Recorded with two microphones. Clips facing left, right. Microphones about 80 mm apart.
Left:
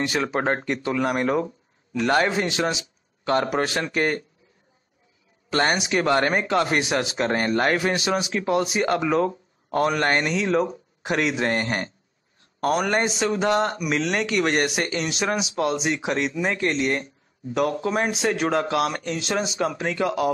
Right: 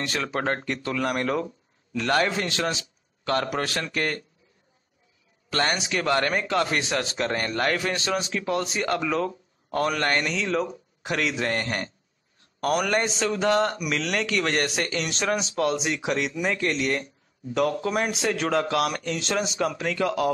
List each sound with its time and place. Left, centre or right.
0.0 s speech: centre
5.5 s a man's voice: left; by 16.3 s centre
16.4 s speech: centre
19.6 s speech: centre